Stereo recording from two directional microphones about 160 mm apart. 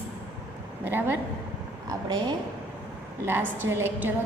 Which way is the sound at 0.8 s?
15° right (ahead or behind).